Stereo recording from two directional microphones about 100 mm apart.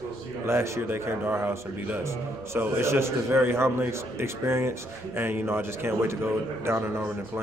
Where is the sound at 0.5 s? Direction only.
25° right (ahead or behind).